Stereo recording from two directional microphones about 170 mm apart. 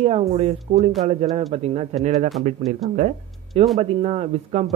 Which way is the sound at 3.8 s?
35° right (ahead or behind).